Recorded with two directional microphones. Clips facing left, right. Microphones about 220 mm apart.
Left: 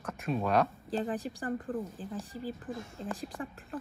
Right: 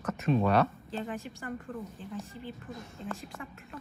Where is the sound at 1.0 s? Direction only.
35° left (ahead or behind).